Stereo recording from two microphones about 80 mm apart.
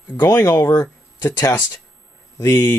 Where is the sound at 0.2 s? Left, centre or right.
Left.